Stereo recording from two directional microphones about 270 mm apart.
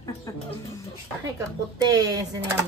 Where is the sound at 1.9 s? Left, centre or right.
Centre.